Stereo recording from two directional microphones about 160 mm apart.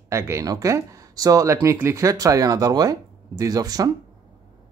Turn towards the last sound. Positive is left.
turn(degrees=-25)  # may be behind; listen again after turning